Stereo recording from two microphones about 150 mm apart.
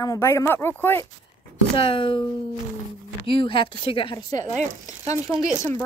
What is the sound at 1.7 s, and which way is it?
Speech, 35° left (ahead or behind).